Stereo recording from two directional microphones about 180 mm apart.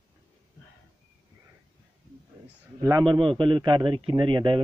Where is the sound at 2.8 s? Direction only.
20° right (ahead or behind).